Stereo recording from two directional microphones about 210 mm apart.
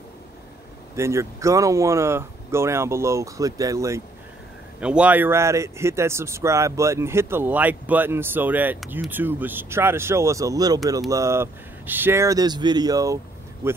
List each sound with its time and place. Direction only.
0.9 s a man's voice: 15° right (ahead or behind)